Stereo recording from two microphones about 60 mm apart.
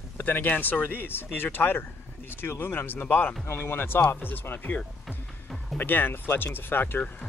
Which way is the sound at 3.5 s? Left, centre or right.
Left.